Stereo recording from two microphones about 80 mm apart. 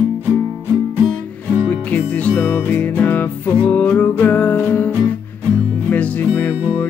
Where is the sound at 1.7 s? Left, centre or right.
Centre.